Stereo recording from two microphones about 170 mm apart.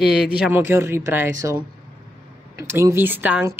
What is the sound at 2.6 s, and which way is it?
Speech, 15° right (ahead or behind).